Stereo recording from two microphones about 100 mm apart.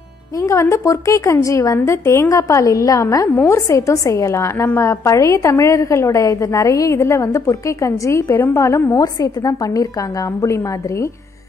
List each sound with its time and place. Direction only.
0.4 s a woman's voice: 30° left (ahead or behind)